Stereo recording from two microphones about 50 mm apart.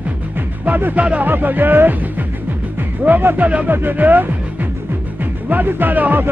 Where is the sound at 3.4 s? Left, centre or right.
Right.